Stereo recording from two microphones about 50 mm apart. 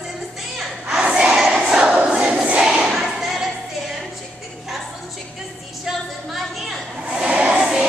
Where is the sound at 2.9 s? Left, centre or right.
Centre.